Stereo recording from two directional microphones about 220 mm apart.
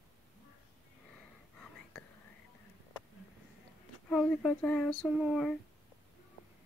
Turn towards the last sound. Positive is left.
turn(degrees=0)  # may be behind; listen again after turning